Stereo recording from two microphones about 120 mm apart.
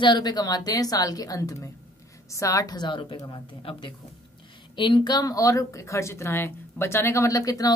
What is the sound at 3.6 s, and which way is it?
A woman's voice, 50° left (ahead or behind).